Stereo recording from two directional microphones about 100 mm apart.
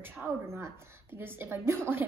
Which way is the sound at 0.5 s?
25° right (ahead or behind).